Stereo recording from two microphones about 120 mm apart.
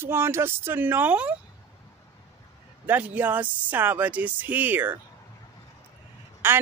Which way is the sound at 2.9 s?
15° right (ahead or behind).